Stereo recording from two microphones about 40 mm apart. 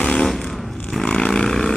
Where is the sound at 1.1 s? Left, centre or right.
Centre.